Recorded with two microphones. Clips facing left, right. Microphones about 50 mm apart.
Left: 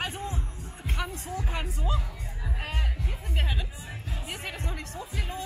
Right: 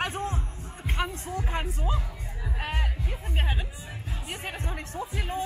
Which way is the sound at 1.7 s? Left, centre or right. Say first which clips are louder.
Right 1 dB; centre.